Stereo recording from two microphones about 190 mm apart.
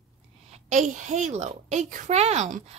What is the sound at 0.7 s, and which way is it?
A woman's voice, 40° right (ahead or behind).